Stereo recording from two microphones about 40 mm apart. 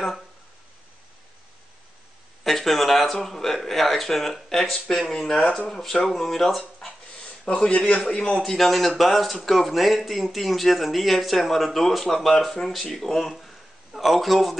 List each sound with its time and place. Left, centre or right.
2.4 s speech: centre
7.7 s a man's voice: left
8.0 s speech: centre
13.9 s speech: centre